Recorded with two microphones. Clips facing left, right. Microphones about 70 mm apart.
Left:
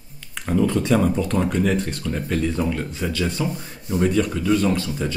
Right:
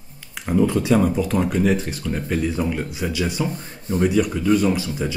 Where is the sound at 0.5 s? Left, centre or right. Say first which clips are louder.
Right 1 dB; centre.